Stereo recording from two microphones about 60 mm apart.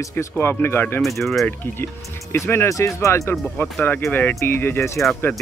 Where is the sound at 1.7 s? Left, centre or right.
Left.